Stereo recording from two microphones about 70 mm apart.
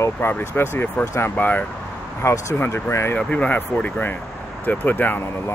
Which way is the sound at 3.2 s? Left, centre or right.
Left.